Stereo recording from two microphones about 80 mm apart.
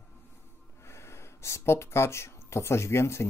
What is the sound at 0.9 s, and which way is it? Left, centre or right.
Speech, left.